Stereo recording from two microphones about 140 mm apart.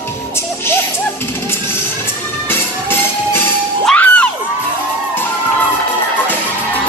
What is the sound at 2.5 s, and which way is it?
Music, 15° left (ahead or behind).